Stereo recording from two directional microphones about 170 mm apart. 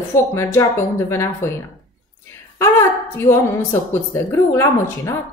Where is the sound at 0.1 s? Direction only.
15° left (ahead or behind).